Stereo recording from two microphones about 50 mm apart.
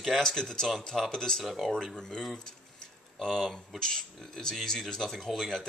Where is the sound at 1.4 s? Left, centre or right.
Centre.